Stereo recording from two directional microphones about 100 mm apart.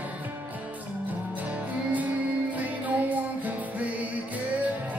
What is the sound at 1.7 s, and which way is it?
Music, 15° right (ahead or behind).